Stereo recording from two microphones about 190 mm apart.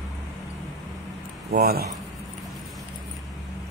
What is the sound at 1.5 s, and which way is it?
Speech, 55° right (ahead or behind).